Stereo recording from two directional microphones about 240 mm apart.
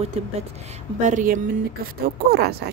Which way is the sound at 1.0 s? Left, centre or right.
Right.